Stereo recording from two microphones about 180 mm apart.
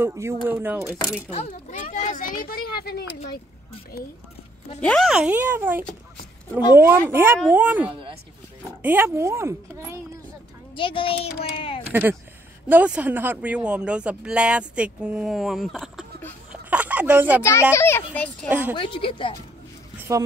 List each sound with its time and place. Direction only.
0.0 s speech: 15° right (ahead or behind)
1.3 s a child's voice: 35° left (ahead or behind); by 3.1 s 60° left (ahead or behind)
4.8 s speech: centre (ahead or behind)
7.9 s speech: 30° right (ahead or behind)
8.8 s speech: 10° right (ahead or behind)
10.8 s speech: 30° left (ahead or behind)
11.9 s speech: 10° right (ahead or behind)
16.7 s a sound: 10° right (ahead or behind)
17.4 s a child's voice: 15° left (ahead or behind)
18.5 s speech: 10° right (ahead or behind)
18.8 s speech: 30° left (ahead or behind)
20.0 s a sound: 15° right (ahead or behind)